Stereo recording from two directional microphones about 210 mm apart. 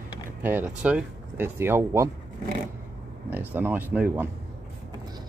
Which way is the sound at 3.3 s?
10° right (ahead or behind).